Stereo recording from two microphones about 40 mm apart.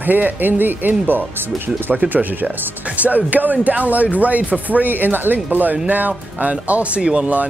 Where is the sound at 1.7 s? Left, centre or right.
Right.